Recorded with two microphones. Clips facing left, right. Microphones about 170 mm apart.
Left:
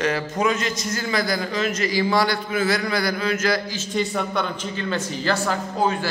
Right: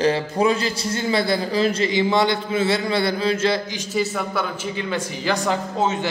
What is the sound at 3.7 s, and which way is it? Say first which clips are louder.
Speech: right 1 dB; 5° right (ahead or behind).